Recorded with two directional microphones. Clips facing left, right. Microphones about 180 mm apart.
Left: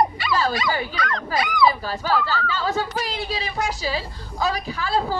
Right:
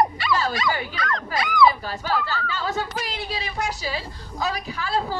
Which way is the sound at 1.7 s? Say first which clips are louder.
Left 2 dB; 35° left (ahead or behind).